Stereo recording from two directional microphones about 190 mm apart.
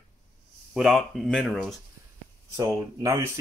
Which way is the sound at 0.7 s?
Centre (ahead or behind).